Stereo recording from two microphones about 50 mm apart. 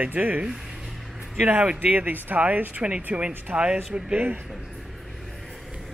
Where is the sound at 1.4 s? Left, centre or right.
Right.